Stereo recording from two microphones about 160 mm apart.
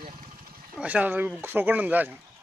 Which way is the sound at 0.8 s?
10° right (ahead or behind).